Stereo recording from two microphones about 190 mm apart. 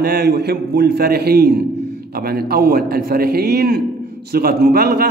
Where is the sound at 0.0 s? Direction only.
55° right (ahead or behind).